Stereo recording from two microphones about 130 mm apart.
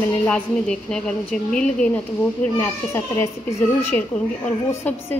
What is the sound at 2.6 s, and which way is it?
A child's voice, 20° left (ahead or behind).